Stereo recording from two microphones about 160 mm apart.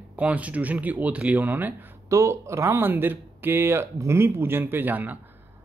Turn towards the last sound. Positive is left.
turn(degrees=-10)  # may be behind; listen again after turning